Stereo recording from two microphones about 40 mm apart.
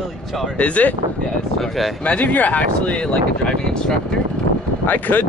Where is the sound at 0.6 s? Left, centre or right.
Left.